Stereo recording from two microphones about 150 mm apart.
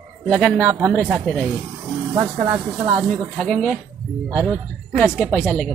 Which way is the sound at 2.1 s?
25° right (ahead or behind).